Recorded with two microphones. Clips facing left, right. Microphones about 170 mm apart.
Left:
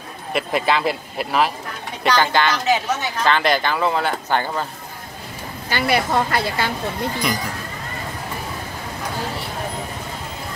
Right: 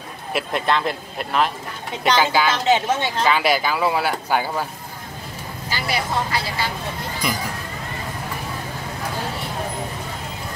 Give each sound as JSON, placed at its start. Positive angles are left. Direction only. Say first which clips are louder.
{"t": 0.3, "sound": "speech", "louder": "left 2 dB", "side_deg": 0}
{"t": 2.6, "sound": "speech", "louder": "right 2 dB", "side_deg": -30}
{"t": 3.3, "sound": "speech", "louder": "left 1 dB", "side_deg": -5}
{"t": 5.7, "sound": "speech", "louder": "left 5 dB", "side_deg": 60}